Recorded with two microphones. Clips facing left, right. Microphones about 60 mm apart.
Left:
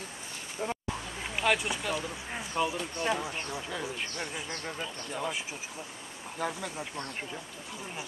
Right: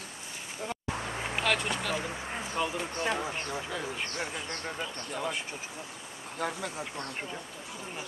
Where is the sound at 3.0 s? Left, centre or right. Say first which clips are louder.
Left 1 dB; centre.